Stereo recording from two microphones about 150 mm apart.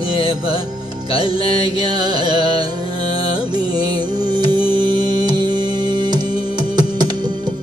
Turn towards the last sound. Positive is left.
turn(degrees=-30)  # may be behind; listen again after turning